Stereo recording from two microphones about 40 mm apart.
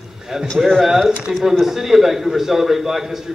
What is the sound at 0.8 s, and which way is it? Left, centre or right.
A man's voice, centre.